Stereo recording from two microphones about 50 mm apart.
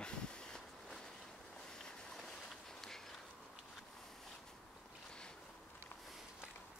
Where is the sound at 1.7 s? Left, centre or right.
Centre.